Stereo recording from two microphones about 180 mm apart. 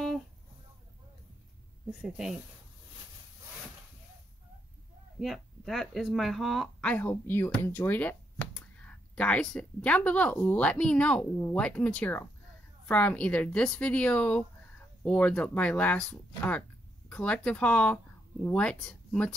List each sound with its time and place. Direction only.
1.9 s speech: 5° right (ahead or behind)
5.2 s speech: centre (ahead or behind)